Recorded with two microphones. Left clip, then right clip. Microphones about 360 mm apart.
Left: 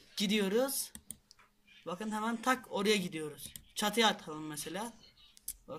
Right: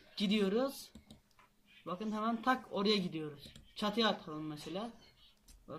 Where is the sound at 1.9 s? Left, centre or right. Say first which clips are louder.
Left 1 dB; centre.